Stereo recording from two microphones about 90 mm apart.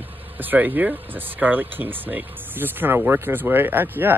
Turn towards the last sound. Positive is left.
turn(degrees=-20)  # may be behind; listen again after turning